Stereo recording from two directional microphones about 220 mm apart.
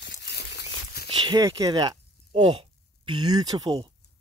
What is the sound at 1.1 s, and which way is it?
Speech, 20° right (ahead or behind).